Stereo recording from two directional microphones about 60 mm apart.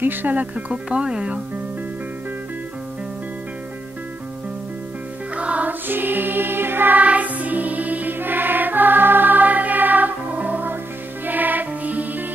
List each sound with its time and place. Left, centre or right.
0.0 s speech: right
0.8 s speech: centre
5.3 s music: right